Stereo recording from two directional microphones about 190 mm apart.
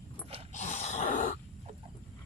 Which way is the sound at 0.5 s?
35° left (ahead or behind).